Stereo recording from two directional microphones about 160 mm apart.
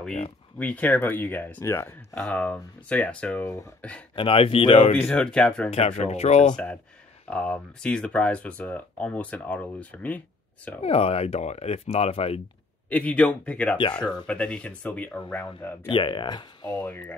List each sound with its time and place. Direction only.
0.6 s speech: 10° left (ahead or behind)
4.1 s speech: 35° left (ahead or behind)
4.9 s speech: 10° left (ahead or behind)
5.7 s speech: 40° left (ahead or behind)
6.5 s speech: 5° left (ahead or behind)
10.8 s speech: 40° left (ahead or behind)
12.9 s speech: 5° left (ahead or behind)
15.9 s speech: 30° left (ahead or behind)